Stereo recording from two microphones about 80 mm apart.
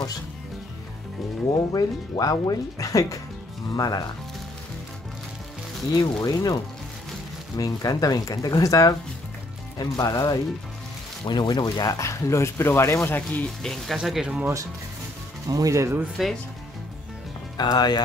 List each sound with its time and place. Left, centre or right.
1.7 s speech: left
5.9 s speech: left
11.2 s speech: left
13.6 s speech: centre
15.4 s speech: right
16.2 s speech: centre
17.6 s speech: left